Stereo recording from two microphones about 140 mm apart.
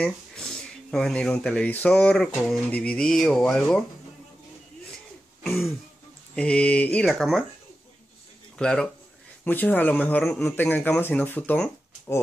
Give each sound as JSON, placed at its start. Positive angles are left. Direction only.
{"t": 0.0, "sound": "speech", "side_deg": 5}
{"t": 5.4, "sound": "throat clearing", "side_deg": 0}
{"t": 6.3, "sound": "a man's voice", "side_deg": 10}
{"t": 8.5, "sound": "a man's voice", "side_deg": 5}